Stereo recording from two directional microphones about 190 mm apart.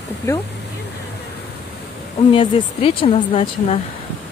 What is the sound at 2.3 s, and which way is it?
Speech, 30° left (ahead or behind).